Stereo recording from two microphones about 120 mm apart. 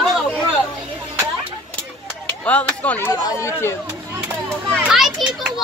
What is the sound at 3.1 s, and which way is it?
Speech, 25° left (ahead or behind).